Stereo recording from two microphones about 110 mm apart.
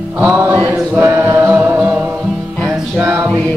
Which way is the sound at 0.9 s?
20° right (ahead or behind).